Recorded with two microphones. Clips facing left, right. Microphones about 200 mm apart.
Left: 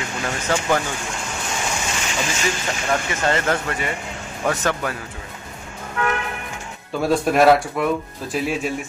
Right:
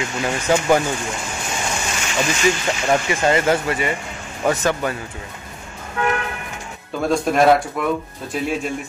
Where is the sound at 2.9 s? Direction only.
15° right (ahead or behind).